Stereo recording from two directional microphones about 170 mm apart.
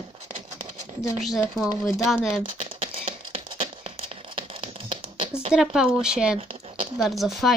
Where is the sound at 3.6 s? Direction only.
35° right (ahead or behind).